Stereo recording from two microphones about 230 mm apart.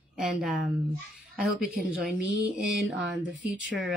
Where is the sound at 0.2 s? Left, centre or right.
Centre.